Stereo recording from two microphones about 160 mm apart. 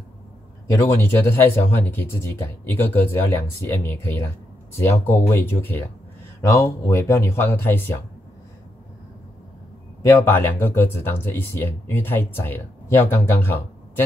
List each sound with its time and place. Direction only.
0.7 s speech: 15° left (ahead or behind)
10.0 s speech: 15° left (ahead or behind)